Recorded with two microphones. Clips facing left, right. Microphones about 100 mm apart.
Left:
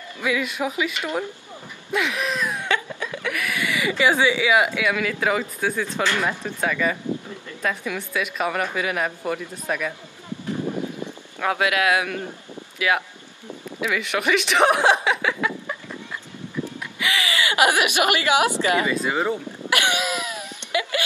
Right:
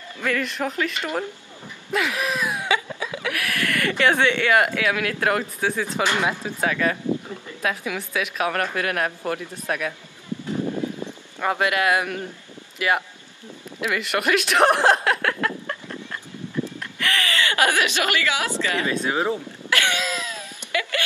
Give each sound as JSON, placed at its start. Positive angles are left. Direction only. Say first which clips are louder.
{"t": 0.2, "sound": "speech", "louder": "left 1 dB", "side_deg": 5}
{"t": 1.9, "sound": "laughter", "louder": "even", "side_deg": 0}
{"t": 4.0, "sound": "speech", "louder": "left 1 dB", "side_deg": 5}
{"t": 11.4, "sound": "speech", "louder": "even", "side_deg": 0}
{"t": 13.7, "sound": "a sound", "louder": "even", "side_deg": 0}
{"t": 16.8, "sound": "speech", "louder": "left 2 dB", "side_deg": 10}
{"t": 18.9, "sound": "speech", "louder": "even", "side_deg": 0}
{"t": 19.7, "sound": "a sound", "louder": "left 1 dB", "side_deg": 15}